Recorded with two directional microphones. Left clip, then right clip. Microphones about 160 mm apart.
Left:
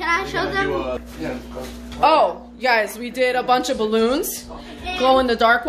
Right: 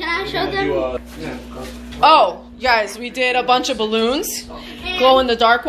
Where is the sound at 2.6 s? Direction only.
20° left (ahead or behind).